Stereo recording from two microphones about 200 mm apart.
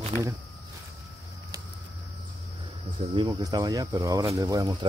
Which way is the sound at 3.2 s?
20° right (ahead or behind).